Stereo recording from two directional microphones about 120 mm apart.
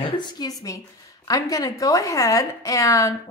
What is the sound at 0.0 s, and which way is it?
A woman's voice, 35° left (ahead or behind).